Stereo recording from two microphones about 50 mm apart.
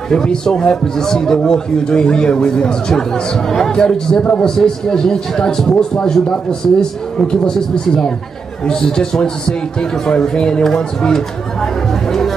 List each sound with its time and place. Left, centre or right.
0.1 s a man's voice: centre